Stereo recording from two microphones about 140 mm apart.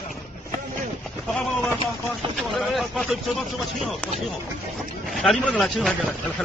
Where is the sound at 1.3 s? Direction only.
5° left (ahead or behind).